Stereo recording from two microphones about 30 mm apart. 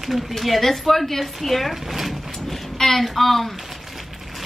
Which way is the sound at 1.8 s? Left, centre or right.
Centre.